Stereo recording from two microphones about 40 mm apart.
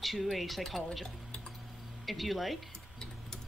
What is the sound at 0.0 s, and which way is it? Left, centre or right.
Speech, centre.